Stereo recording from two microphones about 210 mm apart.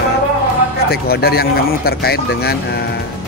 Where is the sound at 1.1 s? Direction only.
50° left (ahead or behind).